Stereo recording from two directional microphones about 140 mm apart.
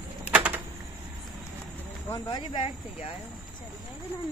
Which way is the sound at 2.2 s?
40° left (ahead or behind).